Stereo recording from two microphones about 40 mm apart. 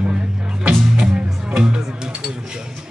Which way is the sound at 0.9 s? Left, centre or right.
Centre.